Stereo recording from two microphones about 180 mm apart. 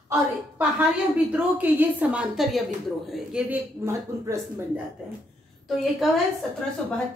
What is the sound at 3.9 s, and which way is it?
Speech, 15° right (ahead or behind).